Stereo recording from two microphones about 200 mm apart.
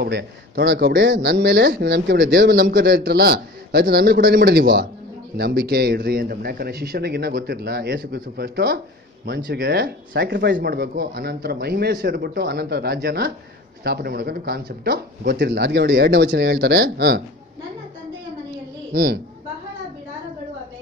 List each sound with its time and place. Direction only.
0.0 s speech: 55° right (ahead or behind)